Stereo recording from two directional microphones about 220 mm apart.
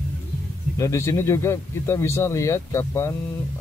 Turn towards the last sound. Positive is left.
turn(degrees=10)  # may be behind; listen again after turning